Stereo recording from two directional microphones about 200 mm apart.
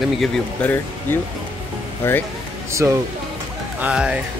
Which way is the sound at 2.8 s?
10° right (ahead or behind).